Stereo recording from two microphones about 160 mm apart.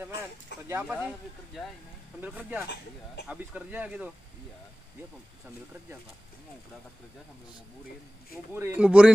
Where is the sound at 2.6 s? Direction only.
90° left.